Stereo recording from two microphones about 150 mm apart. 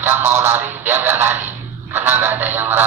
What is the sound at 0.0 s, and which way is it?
Synthetic singing, 15° right (ahead or behind).